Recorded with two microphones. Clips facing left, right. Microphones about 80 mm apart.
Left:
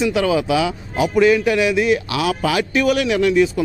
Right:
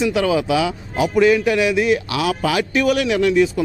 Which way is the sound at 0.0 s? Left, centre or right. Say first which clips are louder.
Even; centre.